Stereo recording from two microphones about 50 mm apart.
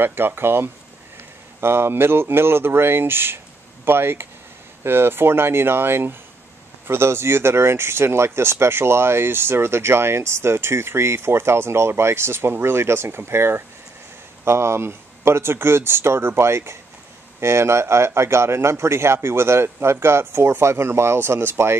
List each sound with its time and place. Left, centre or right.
0.0 s speech: right